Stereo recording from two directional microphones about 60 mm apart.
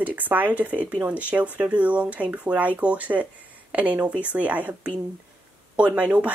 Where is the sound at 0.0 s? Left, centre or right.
Right.